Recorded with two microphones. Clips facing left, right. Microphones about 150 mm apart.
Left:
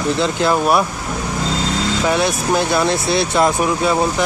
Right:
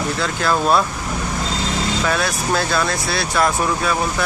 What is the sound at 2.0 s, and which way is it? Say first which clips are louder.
Speech: left 6 dB; 20° left (ahead or behind).